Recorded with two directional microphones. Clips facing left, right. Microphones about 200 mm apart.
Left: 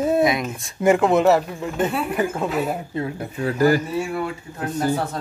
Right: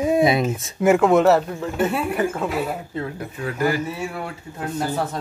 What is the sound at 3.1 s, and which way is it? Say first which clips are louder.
Speech: left 4 dB; 35° left (ahead or behind).